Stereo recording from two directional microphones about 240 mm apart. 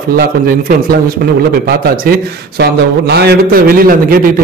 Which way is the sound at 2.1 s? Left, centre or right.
Right.